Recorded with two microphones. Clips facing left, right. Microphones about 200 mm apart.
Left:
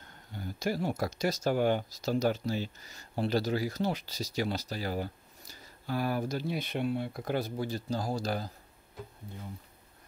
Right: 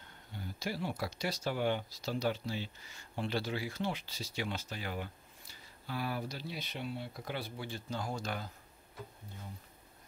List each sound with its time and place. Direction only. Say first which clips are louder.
0.3 s speech: left 7 dB; 45° left (ahead or behind)